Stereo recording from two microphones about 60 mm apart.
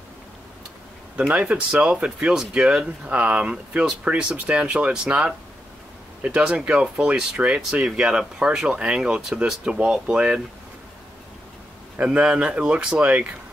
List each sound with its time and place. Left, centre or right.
1.3 s speech: right
12.0 s speech: right